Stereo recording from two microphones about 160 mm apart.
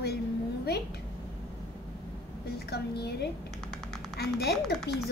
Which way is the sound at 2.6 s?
90° left.